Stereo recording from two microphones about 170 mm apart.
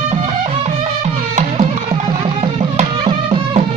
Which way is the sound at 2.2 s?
30° right (ahead or behind).